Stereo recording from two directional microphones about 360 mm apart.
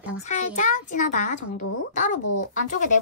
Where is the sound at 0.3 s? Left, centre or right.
Centre.